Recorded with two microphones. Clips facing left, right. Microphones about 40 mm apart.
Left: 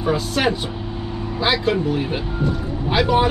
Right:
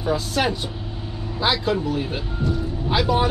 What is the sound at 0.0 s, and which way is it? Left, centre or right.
Speech, centre.